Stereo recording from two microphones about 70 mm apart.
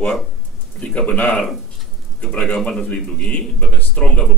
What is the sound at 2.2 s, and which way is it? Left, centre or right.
A man's voice, centre.